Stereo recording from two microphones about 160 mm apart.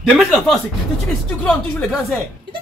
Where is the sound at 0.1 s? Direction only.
Centre (ahead or behind).